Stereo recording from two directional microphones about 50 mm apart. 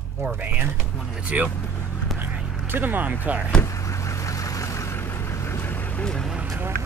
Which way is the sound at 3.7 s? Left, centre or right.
Left.